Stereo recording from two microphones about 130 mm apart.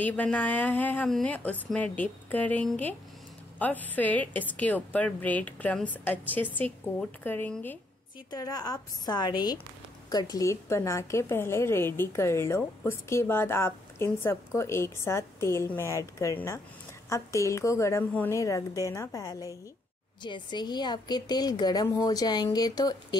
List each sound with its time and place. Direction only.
0.0 s a woman's voice: 10° left (ahead or behind)
8.3 s a woman's voice: 30° left (ahead or behind)